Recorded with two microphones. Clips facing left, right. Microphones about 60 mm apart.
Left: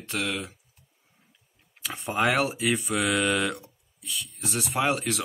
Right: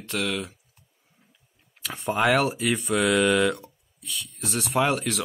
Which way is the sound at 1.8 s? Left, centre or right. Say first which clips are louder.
Right 4 dB; centre.